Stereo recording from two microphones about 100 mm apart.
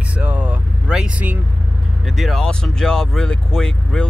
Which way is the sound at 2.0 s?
Centre (ahead or behind).